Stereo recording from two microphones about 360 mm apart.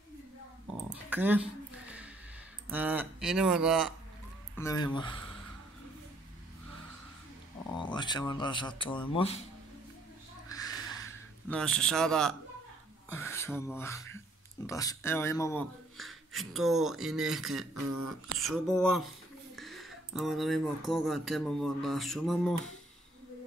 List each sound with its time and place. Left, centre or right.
1.1 s speech: centre
2.7 s speech: centre
4.6 s speech: centre
7.7 s speech: centre
11.1 s a man's voice: centre
17.8 s speech: right
18.4 s speech: centre